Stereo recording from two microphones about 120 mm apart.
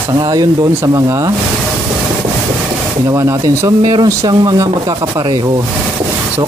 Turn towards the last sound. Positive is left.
turn(degrees=-35)  # may be behind; listen again after turning